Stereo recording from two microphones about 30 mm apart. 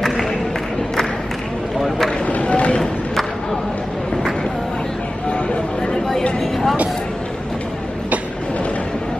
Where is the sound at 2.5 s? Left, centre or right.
Left.